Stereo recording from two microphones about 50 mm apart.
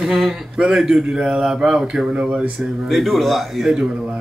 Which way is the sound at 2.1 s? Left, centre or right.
Right.